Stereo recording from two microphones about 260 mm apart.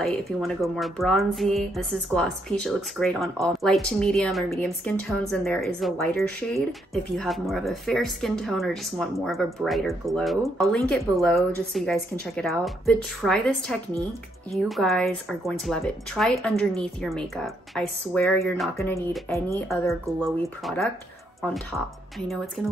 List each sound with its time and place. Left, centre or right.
0.0 s speech: centre